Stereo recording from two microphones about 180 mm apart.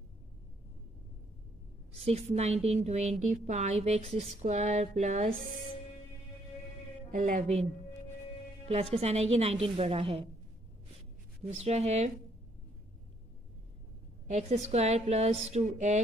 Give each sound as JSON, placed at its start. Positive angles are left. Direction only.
{"t": 2.0, "sound": "a woman's voice", "side_deg": -35}
{"t": 7.2, "sound": "a woman's voice", "side_deg": -40}
{"t": 8.9, "sound": "a woman's voice", "side_deg": -35}
{"t": 11.5, "sound": "a woman's voice", "side_deg": -35}
{"t": 14.3, "sound": "a woman's voice", "side_deg": -35}